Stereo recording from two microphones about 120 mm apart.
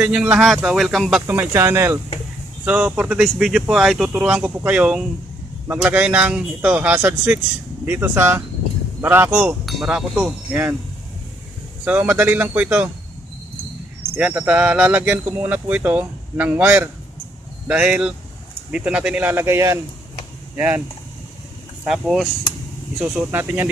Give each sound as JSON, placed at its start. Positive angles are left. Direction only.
{"t": 0.0, "sound": "speech", "side_deg": -10}
{"t": 1.2, "sound": "speech", "side_deg": -20}
{"t": 2.6, "sound": "speech", "side_deg": -10}
{"t": 11.8, "sound": "speech", "side_deg": -15}
{"t": 14.1, "sound": "speech", "side_deg": -10}
{"t": 21.8, "sound": "speech", "side_deg": 0}
{"t": 22.9, "sound": "speech", "side_deg": -15}